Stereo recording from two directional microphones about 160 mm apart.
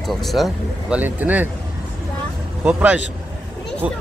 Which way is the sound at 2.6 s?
10° right (ahead or behind).